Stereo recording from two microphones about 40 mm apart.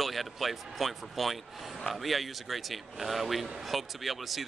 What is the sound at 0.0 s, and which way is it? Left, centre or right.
Speech, centre.